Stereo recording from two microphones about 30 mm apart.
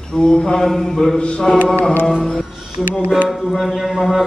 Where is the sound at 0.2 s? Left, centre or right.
Left.